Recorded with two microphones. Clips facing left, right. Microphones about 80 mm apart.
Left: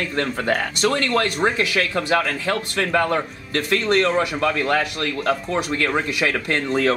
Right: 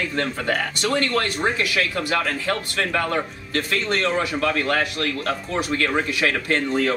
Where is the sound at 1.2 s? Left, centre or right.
Centre.